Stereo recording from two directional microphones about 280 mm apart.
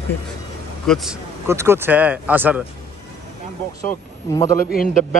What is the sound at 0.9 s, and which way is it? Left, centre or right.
Speech, centre.